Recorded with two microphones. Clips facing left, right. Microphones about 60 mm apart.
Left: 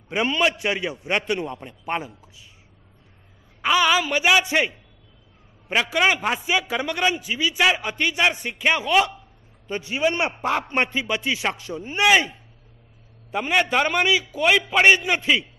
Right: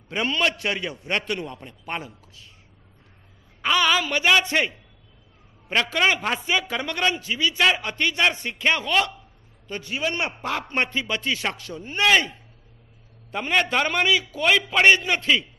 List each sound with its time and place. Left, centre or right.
0.1 s a man's voice: centre
3.6 s a man's voice: centre
9.7 s a man's voice: left
13.3 s a man's voice: centre